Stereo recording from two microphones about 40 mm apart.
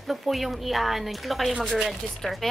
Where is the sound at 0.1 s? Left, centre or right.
Centre.